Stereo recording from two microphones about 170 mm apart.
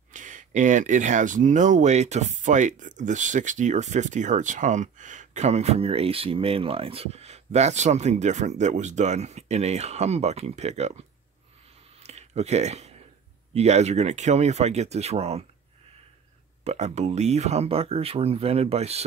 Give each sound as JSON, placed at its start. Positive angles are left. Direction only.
{"t": 0.1, "sound": "speech", "side_deg": -50}
{"t": 12.0, "sound": "a sound", "side_deg": -40}
{"t": 13.5, "sound": "speech", "side_deg": -40}
{"t": 16.6, "sound": "speech", "side_deg": -40}